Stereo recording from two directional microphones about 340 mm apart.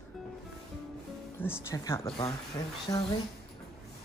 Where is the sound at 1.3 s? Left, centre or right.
Centre.